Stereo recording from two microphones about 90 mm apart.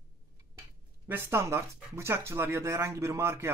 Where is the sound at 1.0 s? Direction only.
25° right (ahead or behind).